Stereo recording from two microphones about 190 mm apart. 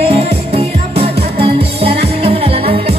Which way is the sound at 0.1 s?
30° right (ahead or behind).